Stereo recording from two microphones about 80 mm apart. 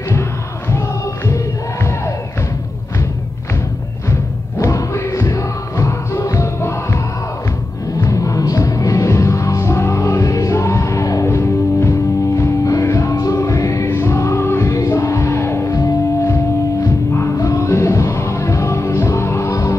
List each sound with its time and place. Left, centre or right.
0.7 s music: left
4.6 s music: left
8.1 s music: left